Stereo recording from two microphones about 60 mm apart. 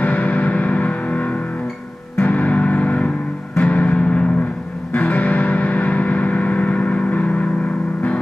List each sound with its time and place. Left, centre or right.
0.0 s music: left